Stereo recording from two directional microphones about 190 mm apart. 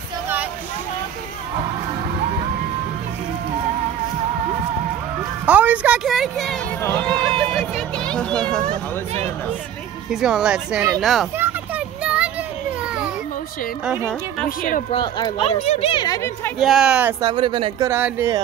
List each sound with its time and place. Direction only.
5.4 s a sound: 10° right (ahead or behind)
8.6 s speech: 35° right (ahead or behind)
10.2 s speech: 5° right (ahead or behind)
11.0 s a sound: centre (ahead or behind)
13.8 s speech: 5° left (ahead or behind)
14.9 s speech: 20° left (ahead or behind)
15.4 s speech: 35° left (ahead or behind)
16.5 s speech: centre (ahead or behind)
17.2 s speech: 25° right (ahead or behind)
17.8 s speech: 15° right (ahead or behind)